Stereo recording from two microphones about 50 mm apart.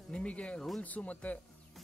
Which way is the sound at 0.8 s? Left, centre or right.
Left.